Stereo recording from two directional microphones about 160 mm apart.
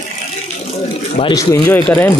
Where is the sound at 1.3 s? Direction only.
15° left (ahead or behind).